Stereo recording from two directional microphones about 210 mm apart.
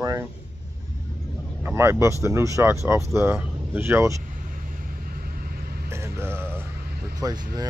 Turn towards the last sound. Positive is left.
turn(degrees=-20)  # may be behind; listen again after turning